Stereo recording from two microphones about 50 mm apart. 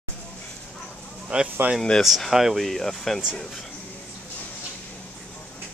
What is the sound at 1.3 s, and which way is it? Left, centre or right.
Speech, right.